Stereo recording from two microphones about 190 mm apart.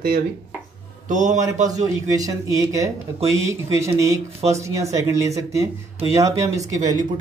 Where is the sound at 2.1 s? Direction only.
20° right (ahead or behind).